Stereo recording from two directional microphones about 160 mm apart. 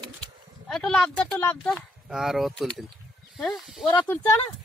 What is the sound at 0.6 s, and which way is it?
Speech, 5° left (ahead or behind).